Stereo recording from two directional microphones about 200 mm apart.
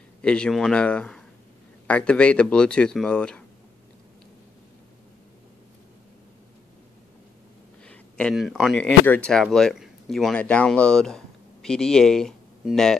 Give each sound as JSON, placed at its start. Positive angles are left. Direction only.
{"t": 0.2, "sound": "speech", "side_deg": 5}
{"t": 7.8, "sound": "speech", "side_deg": 5}